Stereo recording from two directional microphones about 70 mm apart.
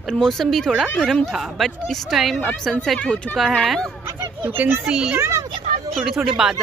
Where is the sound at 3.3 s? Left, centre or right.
Left.